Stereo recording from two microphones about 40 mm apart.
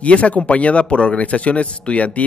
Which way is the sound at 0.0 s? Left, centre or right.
Left.